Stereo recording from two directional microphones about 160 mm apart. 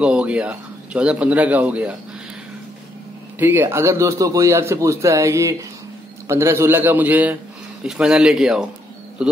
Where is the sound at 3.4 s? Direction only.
15° right (ahead or behind).